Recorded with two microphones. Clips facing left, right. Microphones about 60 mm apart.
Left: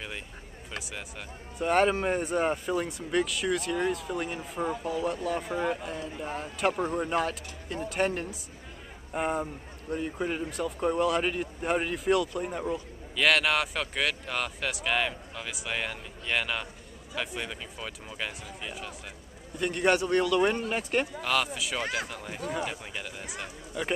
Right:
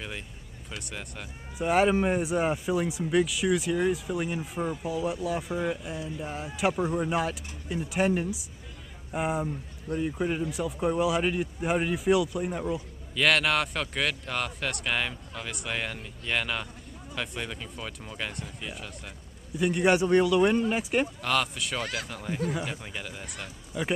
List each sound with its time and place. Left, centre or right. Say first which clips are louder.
0.8 s a man's voice: right 1 dB; centre
5.4 s speech: even; left
6.2 s a man's voice: even; centre
19.6 s speech: right 2 dB; centre
20.3 s a man's voice: right 3 dB; centre
21.8 s speech: left 2 dB; left
22.1 s a man's voice: right 3 dB; centre
23.7 s speech: right 1 dB; centre